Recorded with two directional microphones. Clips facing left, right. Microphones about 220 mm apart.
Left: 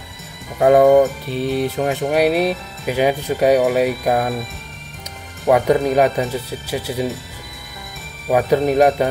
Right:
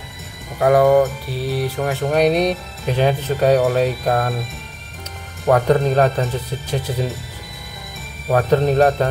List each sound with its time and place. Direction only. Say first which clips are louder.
0.6 s speech: left 2 dB; 25° left (ahead or behind)
5.5 s speech: left 1 dB; 10° left (ahead or behind)
8.3 s speech: even; 10° left (ahead or behind)